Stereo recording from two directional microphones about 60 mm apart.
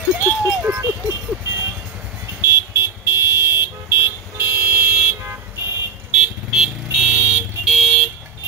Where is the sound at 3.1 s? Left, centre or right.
Right.